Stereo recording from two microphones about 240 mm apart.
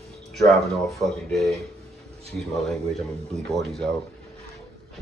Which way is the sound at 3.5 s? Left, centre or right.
Centre.